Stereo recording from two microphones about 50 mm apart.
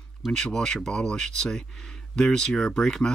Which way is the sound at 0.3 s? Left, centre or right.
Centre.